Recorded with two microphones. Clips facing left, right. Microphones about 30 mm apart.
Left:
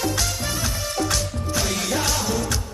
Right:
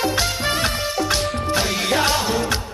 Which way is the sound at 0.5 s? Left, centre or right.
Right.